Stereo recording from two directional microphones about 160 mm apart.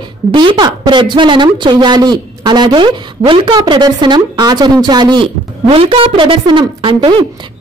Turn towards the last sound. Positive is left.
turn(degrees=-30)  # may be behind; listen again after turning